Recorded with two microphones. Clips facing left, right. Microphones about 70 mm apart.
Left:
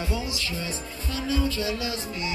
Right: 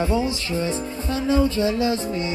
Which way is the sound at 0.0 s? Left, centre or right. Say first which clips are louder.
Right 8 dB; right.